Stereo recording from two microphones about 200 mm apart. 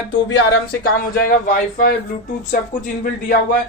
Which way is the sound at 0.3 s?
60° left (ahead or behind).